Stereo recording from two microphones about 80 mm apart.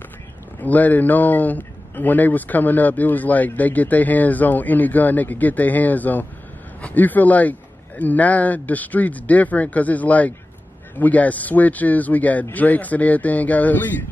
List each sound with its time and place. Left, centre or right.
0.6 s a man's voice: left